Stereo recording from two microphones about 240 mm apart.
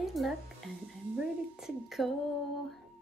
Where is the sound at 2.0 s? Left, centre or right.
Centre.